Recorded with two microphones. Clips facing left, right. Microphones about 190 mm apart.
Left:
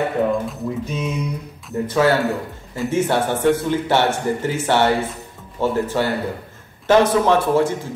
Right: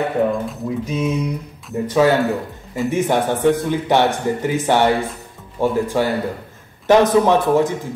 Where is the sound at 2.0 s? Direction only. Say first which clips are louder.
Right 2 dB; 15° right (ahead or behind).